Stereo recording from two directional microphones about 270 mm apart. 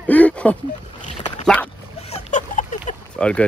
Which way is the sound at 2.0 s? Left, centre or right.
Left.